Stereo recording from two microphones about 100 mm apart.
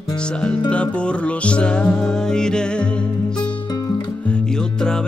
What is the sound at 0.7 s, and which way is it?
Music, 10° left (ahead or behind).